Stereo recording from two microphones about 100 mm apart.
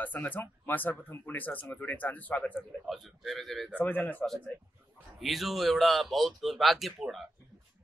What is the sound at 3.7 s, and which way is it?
Speech, 15° left (ahead or behind).